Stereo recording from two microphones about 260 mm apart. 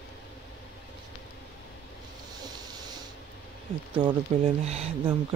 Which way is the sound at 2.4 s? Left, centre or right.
Centre.